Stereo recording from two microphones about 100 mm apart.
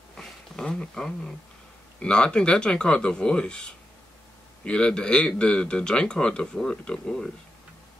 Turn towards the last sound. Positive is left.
turn(degrees=5)  # may be behind; listen again after turning